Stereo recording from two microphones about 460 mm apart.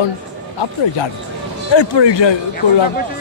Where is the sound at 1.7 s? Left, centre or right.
Left.